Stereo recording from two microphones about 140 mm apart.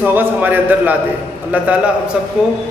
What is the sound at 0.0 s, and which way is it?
Speech, 15° right (ahead or behind).